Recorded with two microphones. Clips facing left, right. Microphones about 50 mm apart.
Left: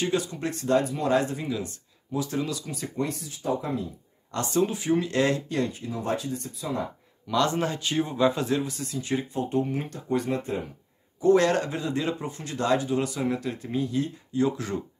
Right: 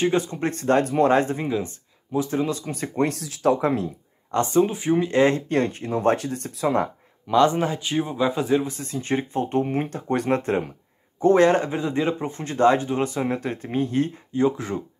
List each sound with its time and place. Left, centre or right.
0.0 s speech: right
3.1 s speech: right
4.5 s speech: right
5.5 s speech: right
7.2 s speech: right
8.6 s speech: right
11.1 s speech: right
14.3 s speech: right